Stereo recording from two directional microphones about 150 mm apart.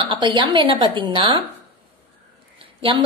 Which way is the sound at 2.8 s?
35° right (ahead or behind).